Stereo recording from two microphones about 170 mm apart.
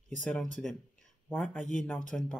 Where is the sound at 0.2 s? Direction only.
5° left (ahead or behind).